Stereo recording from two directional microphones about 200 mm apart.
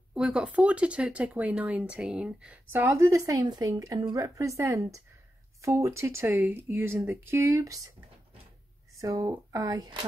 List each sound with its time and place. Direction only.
0.1 s speech: 5° right (ahead or behind)
8.9 s speech: 15° right (ahead or behind)